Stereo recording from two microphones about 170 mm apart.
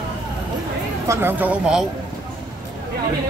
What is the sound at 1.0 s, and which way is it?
Speech, 15° right (ahead or behind).